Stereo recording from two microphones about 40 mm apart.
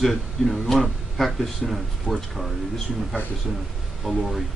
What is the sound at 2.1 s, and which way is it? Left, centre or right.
Speech, left.